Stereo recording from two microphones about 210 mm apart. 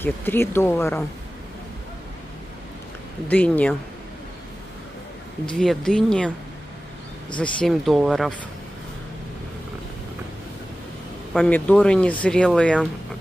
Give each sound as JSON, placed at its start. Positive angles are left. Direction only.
{"t": 0.0, "sound": "speech", "side_deg": 10}
{"t": 3.3, "sound": "speech", "side_deg": 5}
{"t": 5.5, "sound": "speech", "side_deg": 0}
{"t": 7.3, "sound": "speech", "side_deg": 5}
{"t": 11.3, "sound": "speech", "side_deg": 5}